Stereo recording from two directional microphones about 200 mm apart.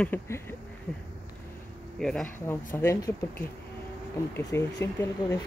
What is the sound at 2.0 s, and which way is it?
Speech, centre (ahead or behind).